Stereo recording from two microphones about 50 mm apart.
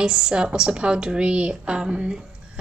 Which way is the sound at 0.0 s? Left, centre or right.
Centre.